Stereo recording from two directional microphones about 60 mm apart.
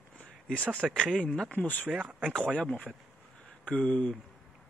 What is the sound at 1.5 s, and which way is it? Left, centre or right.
Speech, left.